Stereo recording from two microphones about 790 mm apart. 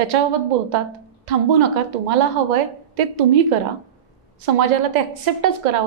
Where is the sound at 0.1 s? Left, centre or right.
Right.